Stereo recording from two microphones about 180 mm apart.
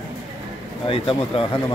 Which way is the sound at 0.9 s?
30° left (ahead or behind).